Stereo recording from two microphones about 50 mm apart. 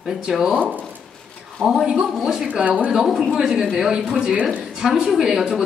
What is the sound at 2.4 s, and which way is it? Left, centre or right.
Speech, right.